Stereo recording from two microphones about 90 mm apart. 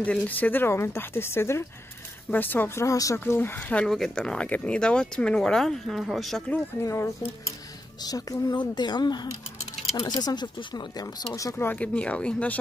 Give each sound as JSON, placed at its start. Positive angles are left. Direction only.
{"t": 0.0, "sound": "speech", "side_deg": 15}
{"t": 3.3, "sound": "speech", "side_deg": 20}
{"t": 3.8, "sound": "speech", "side_deg": 5}
{"t": 6.8, "sound": "speech", "side_deg": 35}
{"t": 11.5, "sound": "speech", "side_deg": 20}